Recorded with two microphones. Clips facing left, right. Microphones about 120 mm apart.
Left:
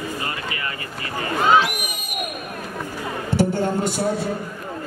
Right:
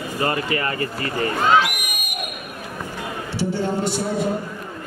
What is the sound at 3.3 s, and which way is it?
Speech, 50° left (ahead or behind).